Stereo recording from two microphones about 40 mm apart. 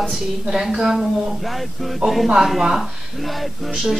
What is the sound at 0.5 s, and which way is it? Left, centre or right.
Speech, centre.